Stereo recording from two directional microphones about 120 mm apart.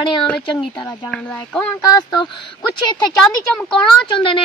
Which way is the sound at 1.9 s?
40° left (ahead or behind).